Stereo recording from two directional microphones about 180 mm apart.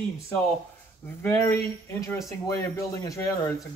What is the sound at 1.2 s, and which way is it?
Speech, 10° left (ahead or behind).